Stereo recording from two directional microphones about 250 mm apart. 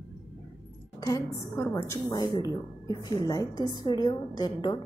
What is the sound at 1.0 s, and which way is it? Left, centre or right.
A woman's voice, centre.